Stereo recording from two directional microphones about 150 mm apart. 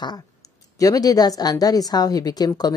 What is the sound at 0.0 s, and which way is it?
Speech, 25° left (ahead or behind).